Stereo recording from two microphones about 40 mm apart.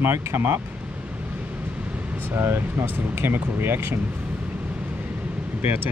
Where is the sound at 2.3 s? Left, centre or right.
Right.